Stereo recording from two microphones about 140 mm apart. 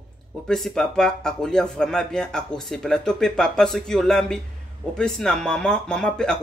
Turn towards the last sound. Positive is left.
turn(degrees=5)  # may be behind; listen again after turning